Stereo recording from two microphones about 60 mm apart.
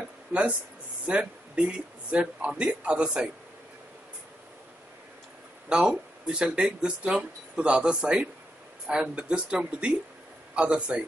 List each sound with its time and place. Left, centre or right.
0.3 s speech: right
5.7 s speech: centre